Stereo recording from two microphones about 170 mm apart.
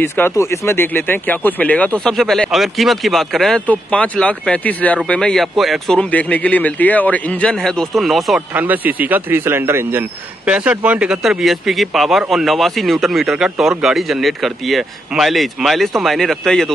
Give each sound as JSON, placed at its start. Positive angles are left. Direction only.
{"t": 0.0, "sound": "speech", "side_deg": 15}